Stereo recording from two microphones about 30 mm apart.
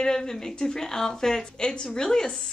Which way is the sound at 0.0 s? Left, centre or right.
Left.